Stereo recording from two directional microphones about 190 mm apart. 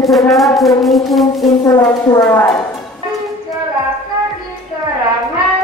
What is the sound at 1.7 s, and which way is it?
Speech, 15° left (ahead or behind).